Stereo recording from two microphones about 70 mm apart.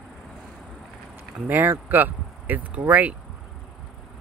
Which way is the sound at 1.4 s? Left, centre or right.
Right.